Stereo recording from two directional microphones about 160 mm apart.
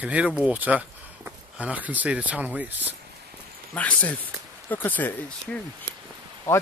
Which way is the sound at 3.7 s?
10° left (ahead or behind).